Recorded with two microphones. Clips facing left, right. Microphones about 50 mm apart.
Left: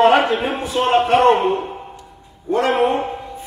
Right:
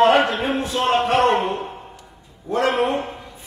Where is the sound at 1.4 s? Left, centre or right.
Centre.